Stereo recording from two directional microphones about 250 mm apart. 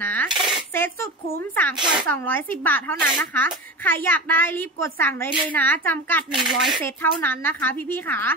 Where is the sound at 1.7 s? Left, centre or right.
Centre.